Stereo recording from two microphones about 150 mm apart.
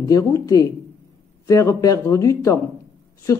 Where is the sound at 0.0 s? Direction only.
25° left (ahead or behind).